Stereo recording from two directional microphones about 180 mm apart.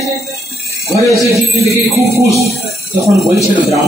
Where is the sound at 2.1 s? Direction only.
15° right (ahead or behind).